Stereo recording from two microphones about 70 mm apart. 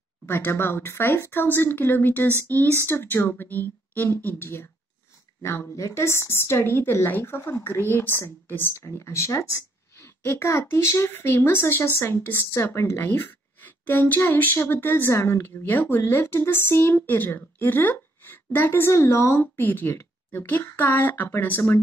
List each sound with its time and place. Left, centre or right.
0.3 s speech: left
9.9 s a sound: left
10.4 s speech: left
18.9 s speech: left
19.4 s speech: left